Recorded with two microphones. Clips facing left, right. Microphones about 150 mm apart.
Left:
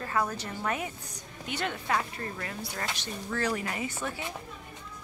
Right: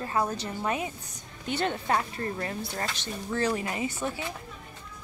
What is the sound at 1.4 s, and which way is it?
A woman's voice, 30° right (ahead or behind).